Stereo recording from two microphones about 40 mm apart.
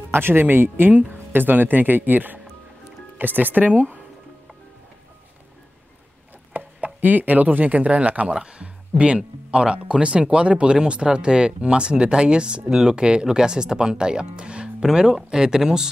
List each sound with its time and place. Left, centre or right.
0.1 s speech: right
6.5 s speech: right
8.3 s speech: right
14.9 s speech: centre